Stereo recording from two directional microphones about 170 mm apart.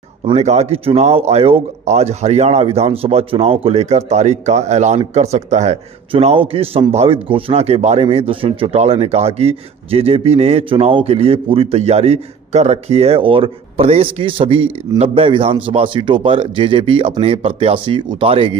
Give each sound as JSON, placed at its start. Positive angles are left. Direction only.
{"t": 0.2, "sound": "speech", "side_deg": -40}